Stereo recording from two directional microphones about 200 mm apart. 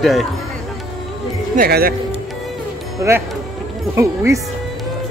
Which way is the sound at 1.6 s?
50° right (ahead or behind).